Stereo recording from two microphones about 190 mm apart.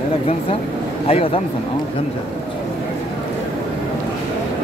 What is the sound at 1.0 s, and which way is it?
Speech, 30° left (ahead or behind).